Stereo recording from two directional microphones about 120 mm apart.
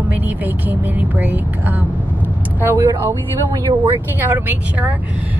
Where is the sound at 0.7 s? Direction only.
15° right (ahead or behind).